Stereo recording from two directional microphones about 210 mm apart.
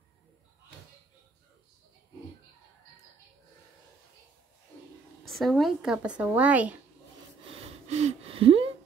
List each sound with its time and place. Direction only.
5.3 s speech: centre (ahead or behind)
7.5 s gasp: 30° right (ahead or behind)